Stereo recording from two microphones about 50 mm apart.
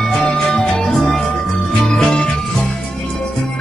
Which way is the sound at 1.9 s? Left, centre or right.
Centre.